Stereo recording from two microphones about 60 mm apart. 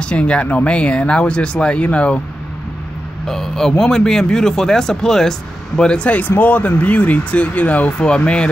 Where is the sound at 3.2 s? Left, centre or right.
Centre.